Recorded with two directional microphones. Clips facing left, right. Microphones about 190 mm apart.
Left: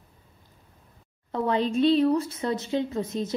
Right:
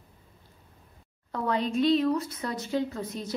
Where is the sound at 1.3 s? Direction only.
25° left (ahead or behind).